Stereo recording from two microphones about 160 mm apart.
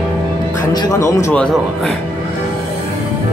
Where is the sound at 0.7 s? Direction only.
25° left (ahead or behind).